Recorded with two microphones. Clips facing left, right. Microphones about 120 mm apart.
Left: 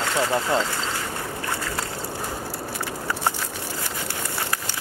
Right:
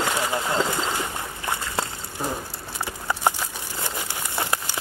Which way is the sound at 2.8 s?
15° right (ahead or behind).